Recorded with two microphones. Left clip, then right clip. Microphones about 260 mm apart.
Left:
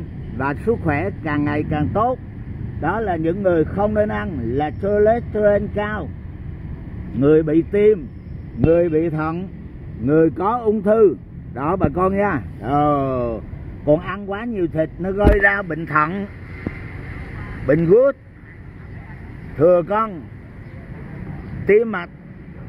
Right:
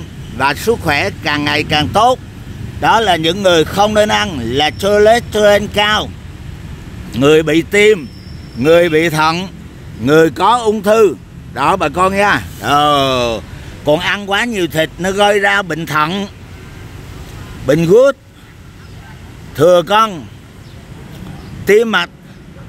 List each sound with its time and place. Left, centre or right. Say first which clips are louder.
0.4 s a man's voice: right 7 dB; right
7.2 s a man's voice: right 5 dB; right
17.6 s speech: right 5 dB; right
19.5 s speech: right 6 dB; right
21.6 s speech: right 6 dB; right